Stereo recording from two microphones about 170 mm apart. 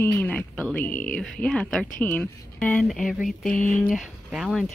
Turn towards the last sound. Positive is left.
turn(degrees=0)  # may be behind; listen again after turning